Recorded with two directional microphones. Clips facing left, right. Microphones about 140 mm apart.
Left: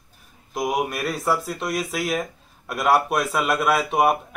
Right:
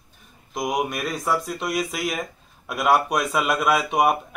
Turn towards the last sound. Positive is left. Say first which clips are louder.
# even
turn(degrees=0)  # may be behind; listen again after turning